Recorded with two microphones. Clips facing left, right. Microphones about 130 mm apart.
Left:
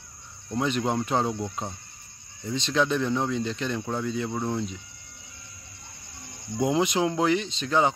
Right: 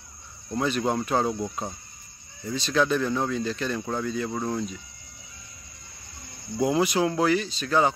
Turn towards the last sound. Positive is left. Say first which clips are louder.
# right 1 dB
turn(degrees=20)  # may be behind; listen again after turning